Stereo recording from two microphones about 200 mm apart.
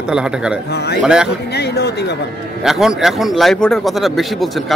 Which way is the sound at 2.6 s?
Centre (ahead or behind).